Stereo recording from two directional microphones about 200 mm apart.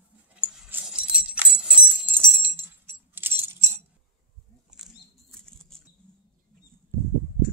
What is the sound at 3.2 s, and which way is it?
Keys jangling, 10° right (ahead or behind).